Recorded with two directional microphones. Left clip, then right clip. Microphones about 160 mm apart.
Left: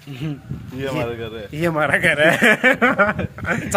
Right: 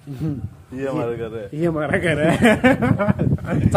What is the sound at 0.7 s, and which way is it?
Speech, 45° right (ahead or behind).